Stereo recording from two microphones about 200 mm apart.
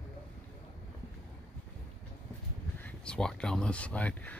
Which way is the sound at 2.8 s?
5° left (ahead or behind).